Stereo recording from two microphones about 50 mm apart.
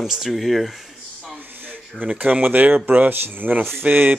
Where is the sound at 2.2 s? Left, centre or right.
Right.